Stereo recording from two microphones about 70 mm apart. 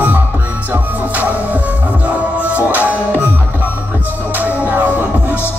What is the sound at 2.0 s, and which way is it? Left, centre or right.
Music, right.